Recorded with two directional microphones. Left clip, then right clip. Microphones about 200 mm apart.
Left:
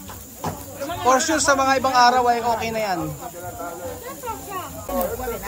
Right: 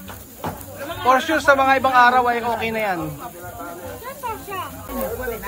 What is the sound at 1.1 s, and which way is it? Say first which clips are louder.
Speech: right 4 dB; 25° left (ahead or behind).